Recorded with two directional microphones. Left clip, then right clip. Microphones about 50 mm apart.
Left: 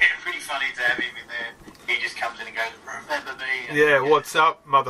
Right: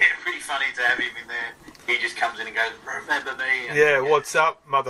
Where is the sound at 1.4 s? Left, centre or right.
Right.